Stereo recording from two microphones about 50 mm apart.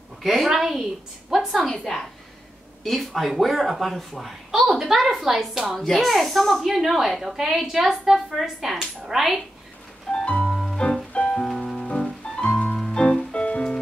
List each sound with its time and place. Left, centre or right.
0.2 s a woman's voice: centre
1.7 s a woman's voice: centre
10.1 s music: left
10.8 s music: centre
11.9 s music: centre